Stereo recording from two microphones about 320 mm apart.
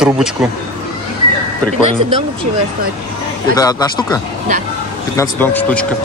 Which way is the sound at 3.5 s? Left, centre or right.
Centre.